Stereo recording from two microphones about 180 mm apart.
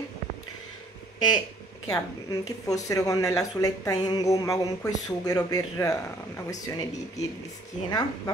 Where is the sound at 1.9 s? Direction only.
20° left (ahead or behind).